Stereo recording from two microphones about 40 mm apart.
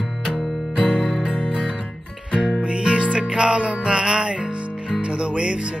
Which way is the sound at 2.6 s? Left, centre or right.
Right.